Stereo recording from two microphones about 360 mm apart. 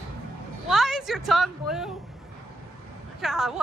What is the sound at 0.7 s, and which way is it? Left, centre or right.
A woman's voice, centre.